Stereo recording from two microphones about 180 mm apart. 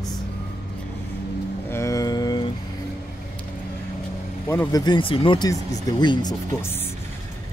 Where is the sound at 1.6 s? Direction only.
15° left (ahead or behind).